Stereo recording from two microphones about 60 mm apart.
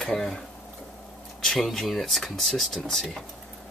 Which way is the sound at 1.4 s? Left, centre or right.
Centre.